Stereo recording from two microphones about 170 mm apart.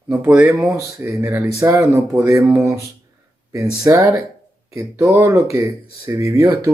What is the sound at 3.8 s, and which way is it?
Speech, 15° right (ahead or behind).